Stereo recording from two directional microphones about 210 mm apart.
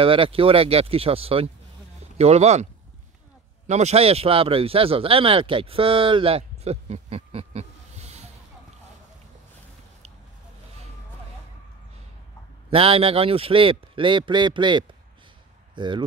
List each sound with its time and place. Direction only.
0.0 s a man's voice: 25° right (ahead or behind)
12.6 s a man's voice: 25° right (ahead or behind)